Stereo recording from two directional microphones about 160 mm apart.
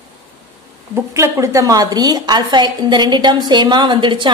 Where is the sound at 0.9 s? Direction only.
20° right (ahead or behind).